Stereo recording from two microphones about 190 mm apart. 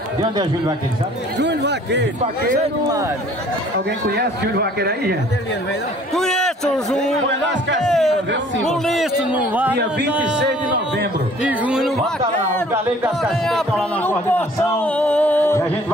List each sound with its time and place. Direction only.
0.2 s speech: 20° right (ahead or behind)
1.4 s a sound: 65° right (ahead or behind)
4.1 s a man's voice: 60° right (ahead or behind)
6.1 s a sound: centre (ahead or behind)
7.8 s a man's voice: centre (ahead or behind)
10.4 s speech: 65° right (ahead or behind)
11.4 s music: 5° right (ahead or behind)
13.2 s a man's voice: centre (ahead or behind)